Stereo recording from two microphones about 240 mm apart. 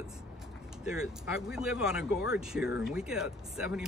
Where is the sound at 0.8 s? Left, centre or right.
Centre.